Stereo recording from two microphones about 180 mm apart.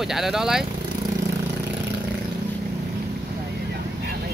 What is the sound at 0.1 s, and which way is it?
Speech, centre (ahead or behind).